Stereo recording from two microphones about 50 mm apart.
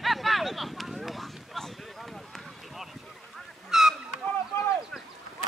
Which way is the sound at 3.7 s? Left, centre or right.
Centre.